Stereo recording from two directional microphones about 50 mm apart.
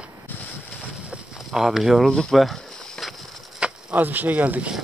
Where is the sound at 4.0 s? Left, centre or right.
Right.